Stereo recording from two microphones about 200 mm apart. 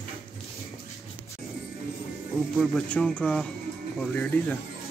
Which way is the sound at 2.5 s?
Centre (ahead or behind).